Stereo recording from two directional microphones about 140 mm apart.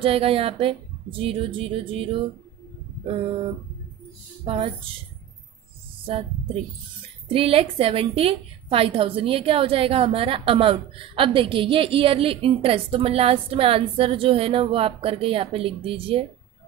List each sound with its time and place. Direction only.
0.0 s a woman's voice: 40° right (ahead or behind)
7.2 s a woman's voice: 45° right (ahead or behind)